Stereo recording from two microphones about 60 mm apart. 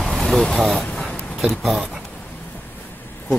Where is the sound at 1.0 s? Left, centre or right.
Centre.